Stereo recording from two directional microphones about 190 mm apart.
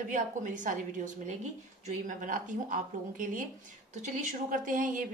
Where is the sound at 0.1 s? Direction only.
40° right (ahead or behind).